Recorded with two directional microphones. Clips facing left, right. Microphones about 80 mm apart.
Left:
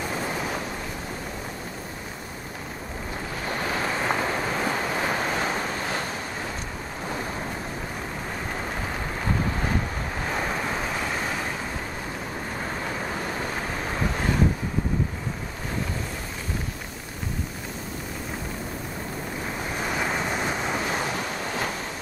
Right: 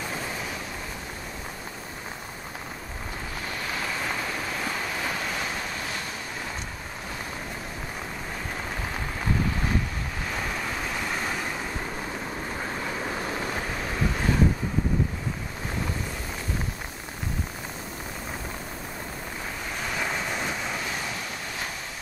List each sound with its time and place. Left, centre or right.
3.5 s waves: left
19.8 s vehicle: centre